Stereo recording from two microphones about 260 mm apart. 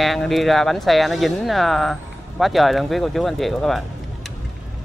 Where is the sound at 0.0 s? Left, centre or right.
Centre.